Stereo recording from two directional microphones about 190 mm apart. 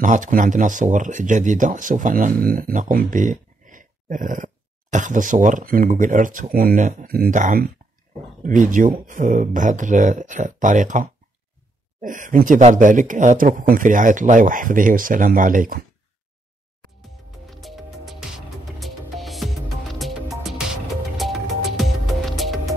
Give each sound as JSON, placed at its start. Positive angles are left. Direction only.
{"t": 0.0, "sound": "speech", "side_deg": -40}
{"t": 16.8, "sound": "music", "side_deg": 0}